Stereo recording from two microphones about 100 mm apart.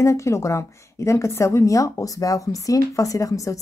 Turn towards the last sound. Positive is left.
turn(degrees=35)  # may be behind; listen again after turning